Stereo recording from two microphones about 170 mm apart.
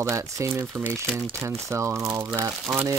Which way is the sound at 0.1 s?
15° right (ahead or behind).